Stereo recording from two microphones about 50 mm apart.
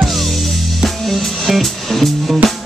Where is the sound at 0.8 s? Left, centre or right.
Centre.